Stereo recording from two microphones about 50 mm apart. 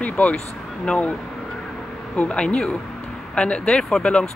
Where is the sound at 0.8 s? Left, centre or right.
Left.